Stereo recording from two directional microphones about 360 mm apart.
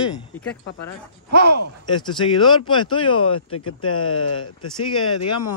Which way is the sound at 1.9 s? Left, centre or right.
Centre.